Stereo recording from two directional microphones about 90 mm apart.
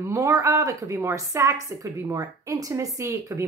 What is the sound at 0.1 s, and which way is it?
A woman's voice, 35° right (ahead or behind).